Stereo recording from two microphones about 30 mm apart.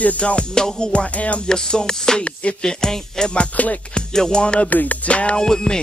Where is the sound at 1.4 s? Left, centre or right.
Left.